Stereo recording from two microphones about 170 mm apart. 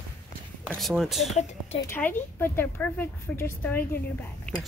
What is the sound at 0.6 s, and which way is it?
Speech, centre (ahead or behind).